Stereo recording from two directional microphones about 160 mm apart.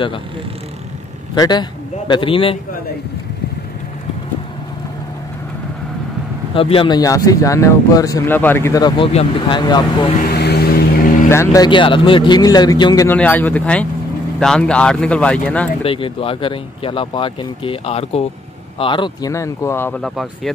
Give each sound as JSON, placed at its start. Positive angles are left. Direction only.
{"t": 1.3, "sound": "speech", "side_deg": 25}
{"t": 6.5, "sound": "speech", "side_deg": 35}
{"t": 8.8, "sound": "speech", "side_deg": 35}
{"t": 10.2, "sound": "vehicle", "side_deg": 90}
{"t": 11.2, "sound": "speech", "side_deg": 20}
{"t": 13.1, "sound": "speech", "side_deg": 10}
{"t": 15.8, "sound": "speech", "side_deg": 35}
{"t": 19.3, "sound": "speech", "side_deg": 20}
{"t": 20.0, "sound": "speech", "side_deg": 0}